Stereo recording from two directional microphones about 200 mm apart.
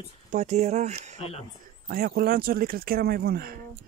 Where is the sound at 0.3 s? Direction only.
35° right (ahead or behind).